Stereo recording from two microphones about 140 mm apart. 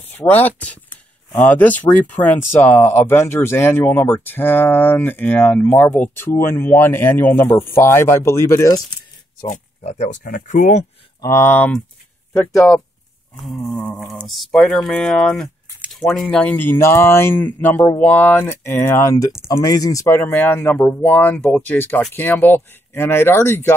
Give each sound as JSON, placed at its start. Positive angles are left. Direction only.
{"t": 0.1, "sound": "speech", "side_deg": 15}
{"t": 9.8, "sound": "speech", "side_deg": 55}
{"t": 10.2, "sound": "speech", "side_deg": 70}
{"t": 11.1, "sound": "speech", "side_deg": 20}
{"t": 13.7, "sound": "speech", "side_deg": 5}